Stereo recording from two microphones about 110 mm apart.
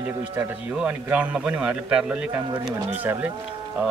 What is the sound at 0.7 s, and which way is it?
Speech, 10° right (ahead or behind).